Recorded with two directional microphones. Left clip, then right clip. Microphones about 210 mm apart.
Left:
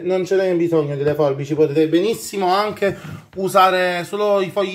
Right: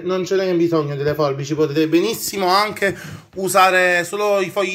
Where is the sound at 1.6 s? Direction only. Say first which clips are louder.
Left 1 dB; 10° right (ahead or behind).